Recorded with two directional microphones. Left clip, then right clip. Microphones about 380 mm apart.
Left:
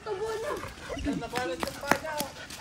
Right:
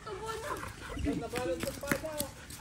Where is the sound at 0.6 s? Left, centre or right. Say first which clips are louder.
Left 5 dB; centre.